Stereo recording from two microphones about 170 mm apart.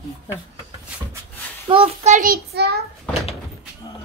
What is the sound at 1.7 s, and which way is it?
Speech, 30° right (ahead or behind).